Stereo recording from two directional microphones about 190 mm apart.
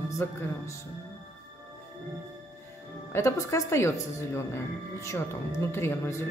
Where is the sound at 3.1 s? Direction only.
15° left (ahead or behind).